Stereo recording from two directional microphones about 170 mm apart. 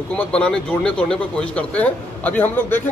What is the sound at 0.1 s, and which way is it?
Speech, 5° left (ahead or behind).